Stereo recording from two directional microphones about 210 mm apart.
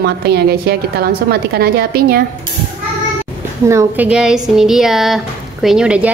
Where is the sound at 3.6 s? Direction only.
10° right (ahead or behind).